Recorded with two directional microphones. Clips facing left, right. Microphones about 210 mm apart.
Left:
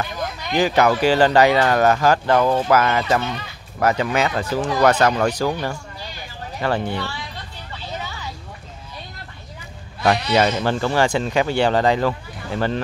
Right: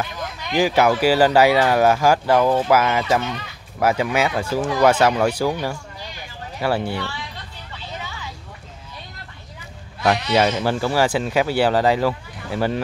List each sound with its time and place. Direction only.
0.1 s a sound: 40° left (ahead or behind)
0.6 s speech: 10° right (ahead or behind)
8.0 s vehicle: 40° left (ahead or behind)
10.3 s speech: 5° right (ahead or behind)